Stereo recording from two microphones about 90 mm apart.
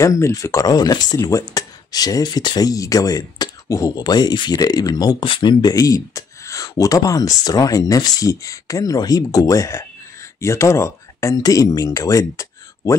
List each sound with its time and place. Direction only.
0.0 s speech: 35° left (ahead or behind)
5.2 s speech: 60° left (ahead or behind); by 12.9 s 35° left (ahead or behind)